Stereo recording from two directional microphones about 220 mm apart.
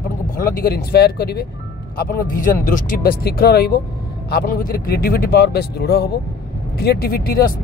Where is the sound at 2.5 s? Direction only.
40° left (ahead or behind).